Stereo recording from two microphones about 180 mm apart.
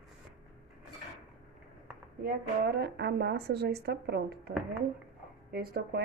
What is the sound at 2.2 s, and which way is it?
A woman's voice, 60° right (ahead or behind).